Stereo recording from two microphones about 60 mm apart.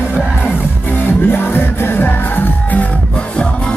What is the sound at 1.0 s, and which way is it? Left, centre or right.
Music, left.